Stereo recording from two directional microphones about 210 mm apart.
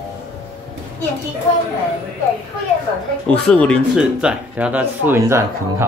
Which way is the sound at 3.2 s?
5° left (ahead or behind).